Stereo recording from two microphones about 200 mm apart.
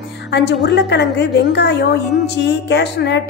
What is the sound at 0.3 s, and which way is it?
A woman's voice, 60° left (ahead or behind).